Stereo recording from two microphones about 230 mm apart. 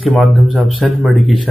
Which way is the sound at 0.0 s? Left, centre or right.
Centre.